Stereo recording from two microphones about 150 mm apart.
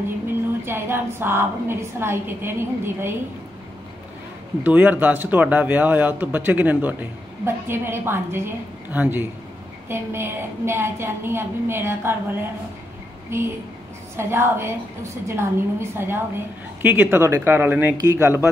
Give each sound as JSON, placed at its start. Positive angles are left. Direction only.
{"t": 0.7, "sound": "a man's voice", "side_deg": -15}
{"t": 4.6, "sound": "a man's voice", "side_deg": -10}